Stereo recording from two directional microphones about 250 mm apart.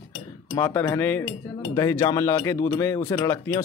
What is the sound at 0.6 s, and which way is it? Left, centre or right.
Speech, centre.